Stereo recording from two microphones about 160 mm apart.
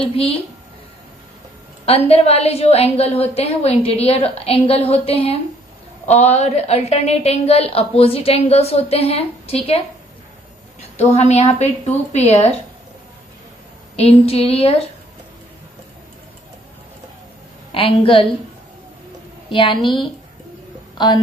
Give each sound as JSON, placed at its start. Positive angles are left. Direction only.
{"t": 0.0, "sound": "a woman's voice", "side_deg": 35}
{"t": 1.9, "sound": "a woman's voice", "side_deg": 40}
{"t": 11.0, "sound": "a woman's voice", "side_deg": 40}
{"t": 13.9, "sound": "a woman's voice", "side_deg": 40}
{"t": 17.7, "sound": "a woman's voice", "side_deg": 35}
{"t": 19.5, "sound": "a woman's voice", "side_deg": 30}
{"t": 21.0, "sound": "a woman's voice", "side_deg": 25}